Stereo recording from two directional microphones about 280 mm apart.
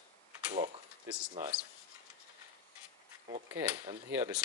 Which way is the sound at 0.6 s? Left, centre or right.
Centre.